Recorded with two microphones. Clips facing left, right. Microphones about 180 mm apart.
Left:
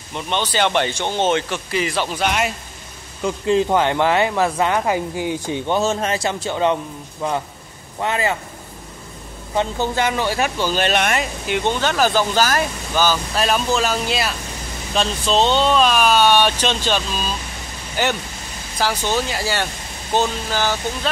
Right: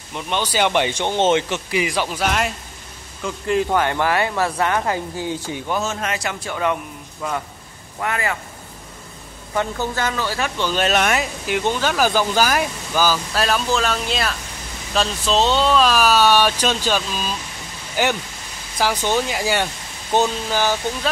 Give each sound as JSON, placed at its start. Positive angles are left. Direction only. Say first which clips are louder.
{"t": 0.1, "sound": "speech", "louder": "left 1 dB", "side_deg": -10}
{"t": 3.3, "sound": "speech", "louder": "left 3 dB", "side_deg": 25}
{"t": 5.7, "sound": "a man's voice", "louder": "left 4 dB", "side_deg": 30}
{"t": 9.6, "sound": "a man's voice", "louder": "left 2 dB", "side_deg": 20}
{"t": 10.6, "sound": "speech", "louder": "right 2 dB", "side_deg": 0}